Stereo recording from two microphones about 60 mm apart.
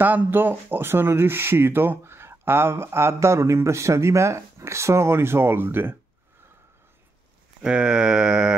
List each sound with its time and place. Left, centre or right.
0.0 s speech: right
7.6 s speech: centre